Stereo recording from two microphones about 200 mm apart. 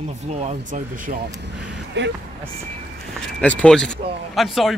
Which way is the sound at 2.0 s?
60° right (ahead or behind).